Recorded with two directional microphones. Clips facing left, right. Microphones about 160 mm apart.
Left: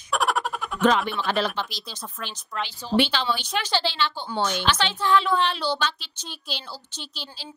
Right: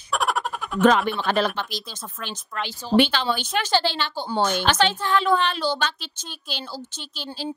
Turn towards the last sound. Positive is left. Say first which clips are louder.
# right 6 dB
turn(degrees=-50)  # may be behind; listen again after turning